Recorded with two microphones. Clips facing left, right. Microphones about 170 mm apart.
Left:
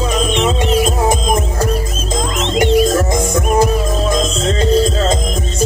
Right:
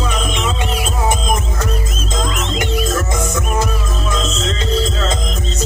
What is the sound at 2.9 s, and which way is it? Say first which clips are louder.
Music: left 5 dB; 35° left (ahead or behind).